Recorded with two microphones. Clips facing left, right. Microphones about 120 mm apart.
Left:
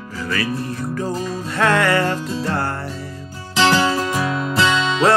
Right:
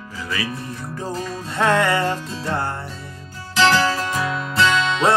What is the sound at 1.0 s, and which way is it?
Music, 25° right (ahead or behind).